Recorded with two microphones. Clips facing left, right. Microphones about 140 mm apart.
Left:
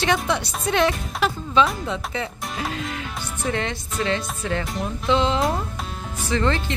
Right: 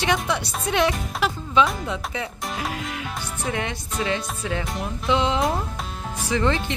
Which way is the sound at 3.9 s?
5° right (ahead or behind).